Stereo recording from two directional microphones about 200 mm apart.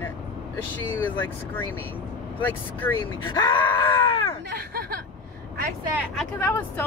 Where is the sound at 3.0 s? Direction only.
25° left (ahead or behind).